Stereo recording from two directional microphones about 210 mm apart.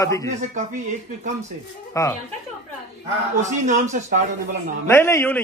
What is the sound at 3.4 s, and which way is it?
Speech, 35° right (ahead or behind).